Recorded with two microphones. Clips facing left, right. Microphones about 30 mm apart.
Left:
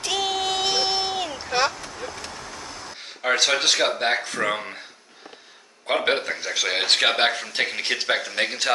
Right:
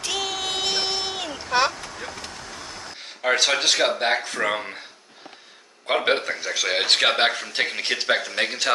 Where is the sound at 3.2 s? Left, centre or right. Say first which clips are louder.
Even; centre.